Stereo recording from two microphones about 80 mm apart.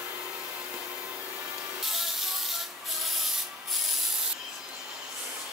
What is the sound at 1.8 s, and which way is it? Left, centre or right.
Rub, centre.